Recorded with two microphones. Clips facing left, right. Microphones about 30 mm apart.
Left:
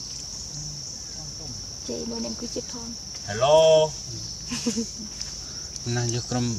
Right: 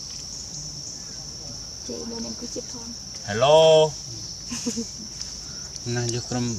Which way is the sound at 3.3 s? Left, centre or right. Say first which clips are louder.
Right 2 dB; right.